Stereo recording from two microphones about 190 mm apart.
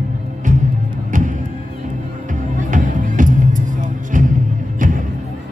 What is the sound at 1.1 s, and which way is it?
Music, 45° right (ahead or behind).